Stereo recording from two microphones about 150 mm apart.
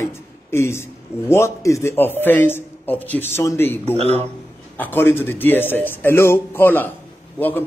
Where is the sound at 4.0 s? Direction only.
45° right (ahead or behind).